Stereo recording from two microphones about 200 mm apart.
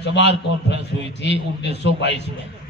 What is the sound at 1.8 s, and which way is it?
Speech, 60° left (ahead or behind).